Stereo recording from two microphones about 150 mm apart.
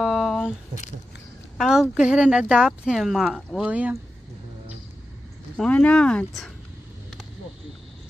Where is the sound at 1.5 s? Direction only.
5° right (ahead or behind).